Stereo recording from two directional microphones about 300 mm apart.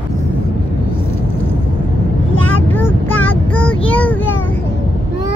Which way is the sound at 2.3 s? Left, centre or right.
Centre.